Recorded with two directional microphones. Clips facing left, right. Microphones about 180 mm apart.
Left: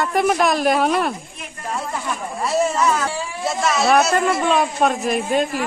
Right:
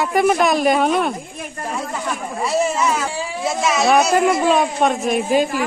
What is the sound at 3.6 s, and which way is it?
Speech, centre (ahead or behind).